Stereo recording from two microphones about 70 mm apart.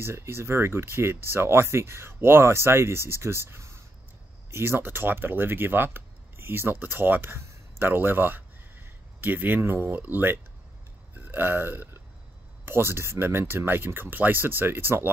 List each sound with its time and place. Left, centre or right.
0.0 s speech: right